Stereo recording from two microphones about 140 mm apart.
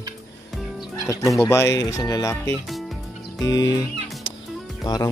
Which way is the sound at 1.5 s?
20° left (ahead or behind).